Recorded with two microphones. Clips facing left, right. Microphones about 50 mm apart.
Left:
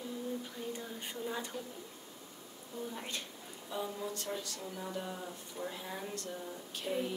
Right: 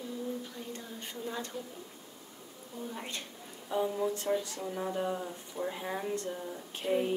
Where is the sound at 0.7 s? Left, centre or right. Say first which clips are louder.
Even; centre.